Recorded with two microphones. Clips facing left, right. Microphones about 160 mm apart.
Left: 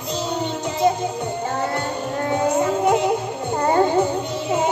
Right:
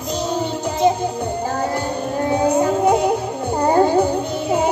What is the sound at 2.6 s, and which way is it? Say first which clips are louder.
Music: right 2 dB; 35° right (ahead or behind).